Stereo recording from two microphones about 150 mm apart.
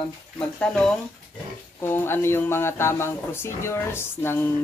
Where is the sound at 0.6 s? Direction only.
5° left (ahead or behind).